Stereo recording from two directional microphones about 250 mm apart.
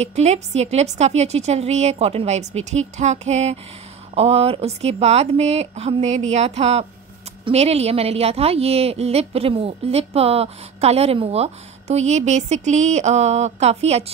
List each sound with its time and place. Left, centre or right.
0.0 s a woman's voice: right